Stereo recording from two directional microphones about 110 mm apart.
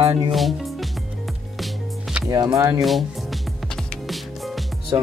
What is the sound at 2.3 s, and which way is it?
Speech, 30° right (ahead or behind).